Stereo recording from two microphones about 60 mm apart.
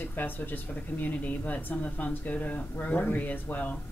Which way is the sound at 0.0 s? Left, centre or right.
Left.